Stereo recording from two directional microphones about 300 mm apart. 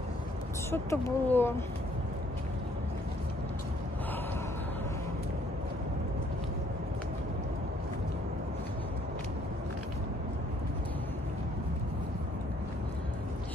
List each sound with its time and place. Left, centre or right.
0.7 s speech: centre